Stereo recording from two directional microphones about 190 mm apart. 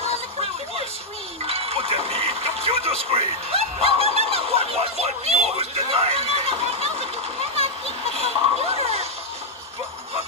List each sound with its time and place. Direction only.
1.5 s music: 30° right (ahead or behind)